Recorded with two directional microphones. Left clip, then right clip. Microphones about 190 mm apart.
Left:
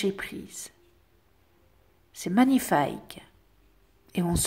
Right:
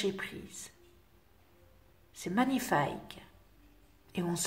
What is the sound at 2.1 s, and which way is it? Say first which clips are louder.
A woman's voice: left 8 dB; 45° left (ahead or behind).